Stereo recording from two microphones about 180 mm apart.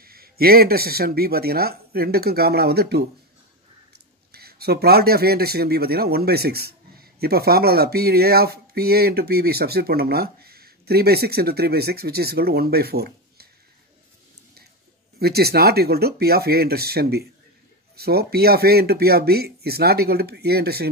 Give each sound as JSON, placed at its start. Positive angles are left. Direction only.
{"t": 0.0, "sound": "speech", "side_deg": -55}
{"t": 4.3, "sound": "speech", "side_deg": -60}
{"t": 15.1, "sound": "speech", "side_deg": -60}